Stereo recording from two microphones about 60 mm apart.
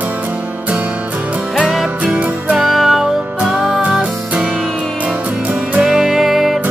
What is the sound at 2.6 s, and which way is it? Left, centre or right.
Music, centre.